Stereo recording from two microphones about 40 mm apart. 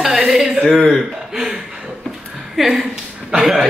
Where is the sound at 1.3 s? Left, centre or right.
Centre.